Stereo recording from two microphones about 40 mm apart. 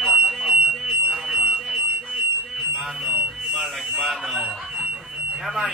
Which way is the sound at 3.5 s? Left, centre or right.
Centre.